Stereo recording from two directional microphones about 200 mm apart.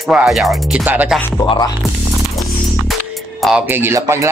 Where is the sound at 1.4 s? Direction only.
25° left (ahead or behind).